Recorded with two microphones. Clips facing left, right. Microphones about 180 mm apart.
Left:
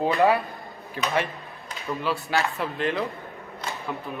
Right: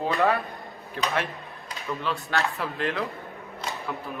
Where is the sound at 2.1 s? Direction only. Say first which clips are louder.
Left 2 dB; 5° left (ahead or behind).